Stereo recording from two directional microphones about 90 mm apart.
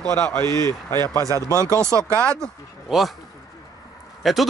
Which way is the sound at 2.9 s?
Centre (ahead or behind).